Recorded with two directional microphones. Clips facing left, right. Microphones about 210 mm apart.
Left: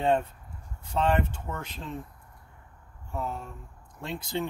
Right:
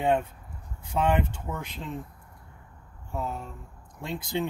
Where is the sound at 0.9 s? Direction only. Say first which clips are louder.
Right 1 dB; 10° right (ahead or behind).